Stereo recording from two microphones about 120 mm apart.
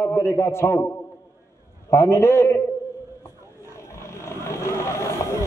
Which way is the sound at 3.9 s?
25° left (ahead or behind).